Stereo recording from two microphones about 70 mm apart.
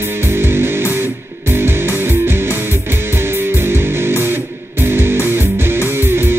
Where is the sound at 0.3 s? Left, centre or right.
Right.